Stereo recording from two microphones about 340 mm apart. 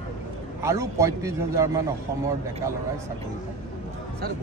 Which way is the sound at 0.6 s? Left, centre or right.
Centre.